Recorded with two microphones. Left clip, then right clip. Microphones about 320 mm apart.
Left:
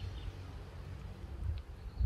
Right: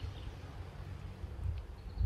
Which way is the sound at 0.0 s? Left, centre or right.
Centre.